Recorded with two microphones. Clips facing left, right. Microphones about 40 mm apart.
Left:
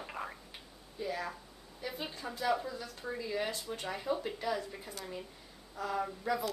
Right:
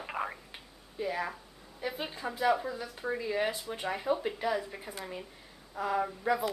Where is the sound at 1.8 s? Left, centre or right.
Centre.